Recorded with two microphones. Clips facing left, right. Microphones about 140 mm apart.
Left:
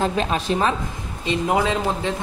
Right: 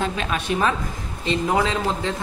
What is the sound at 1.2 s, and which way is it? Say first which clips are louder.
Speech: left 1 dB; 20° left (ahead or behind).